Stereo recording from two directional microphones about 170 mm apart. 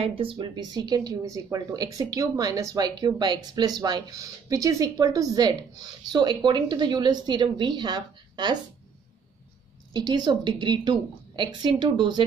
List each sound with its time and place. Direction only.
0.0 s speech: 30° right (ahead or behind)
9.9 s speech: 25° right (ahead or behind)